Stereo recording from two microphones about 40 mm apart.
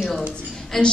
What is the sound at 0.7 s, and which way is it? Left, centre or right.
Speech, centre.